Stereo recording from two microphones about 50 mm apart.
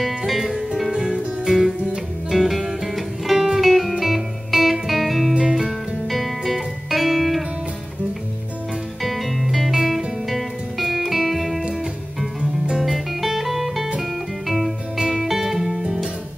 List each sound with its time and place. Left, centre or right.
0.3 s music: centre
9.0 s music: centre
11.6 s music: centre
12.7 s music: centre